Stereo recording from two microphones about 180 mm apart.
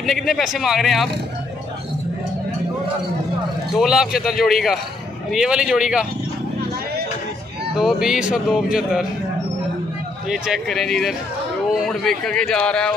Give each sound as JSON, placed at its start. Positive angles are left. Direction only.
{"t": 0.0, "sound": "speech", "side_deg": 0}
{"t": 3.7, "sound": "speech", "side_deg": -5}
{"t": 7.7, "sound": "speech", "side_deg": -5}
{"t": 10.3, "sound": "speech", "side_deg": 0}